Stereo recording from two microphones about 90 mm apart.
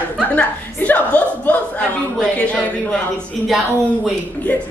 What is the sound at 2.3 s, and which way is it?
Speech, 15° left (ahead or behind).